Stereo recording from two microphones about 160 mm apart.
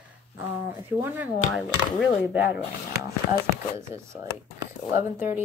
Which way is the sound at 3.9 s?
15° right (ahead or behind).